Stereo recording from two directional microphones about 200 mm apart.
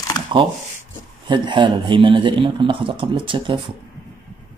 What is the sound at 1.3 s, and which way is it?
Speech, 25° right (ahead or behind).